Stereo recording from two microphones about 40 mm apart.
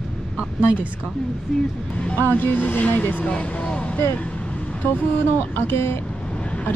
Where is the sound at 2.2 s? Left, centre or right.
Left.